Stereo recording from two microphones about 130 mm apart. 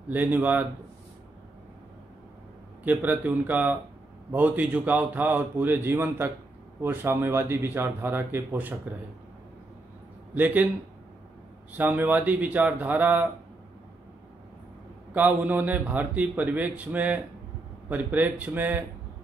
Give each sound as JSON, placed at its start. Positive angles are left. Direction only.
{"t": 0.1, "sound": "a man's voice", "side_deg": -15}
{"t": 2.8, "sound": "a man's voice", "side_deg": -10}
{"t": 10.3, "sound": "a man's voice", "side_deg": -15}
{"t": 11.7, "sound": "a man's voice", "side_deg": -15}
{"t": 15.1, "sound": "a man's voice", "side_deg": -10}